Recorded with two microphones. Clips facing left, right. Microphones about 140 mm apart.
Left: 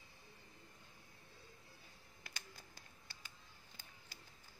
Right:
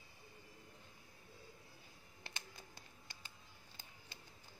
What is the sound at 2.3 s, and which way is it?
Music, 30° right (ahead or behind).